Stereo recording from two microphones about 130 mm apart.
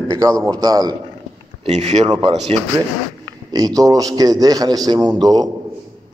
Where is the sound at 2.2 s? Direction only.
45° right (ahead or behind).